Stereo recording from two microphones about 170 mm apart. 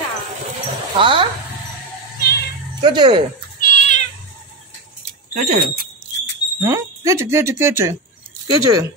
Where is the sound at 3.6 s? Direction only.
50° left (ahead or behind).